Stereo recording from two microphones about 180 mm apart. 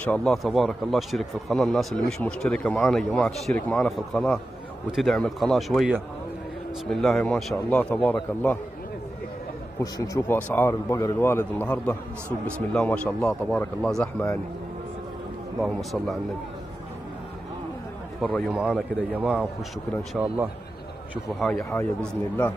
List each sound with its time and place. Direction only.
0.0 s a man's voice: 5° left (ahead or behind)
9.8 s a man's voice: 15° left (ahead or behind)
15.6 s a man's voice: centre (ahead or behind)
18.2 s a man's voice: centre (ahead or behind)
21.1 s a man's voice: centre (ahead or behind)